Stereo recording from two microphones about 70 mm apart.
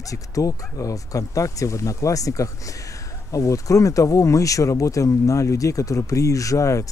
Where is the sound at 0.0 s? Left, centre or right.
Left.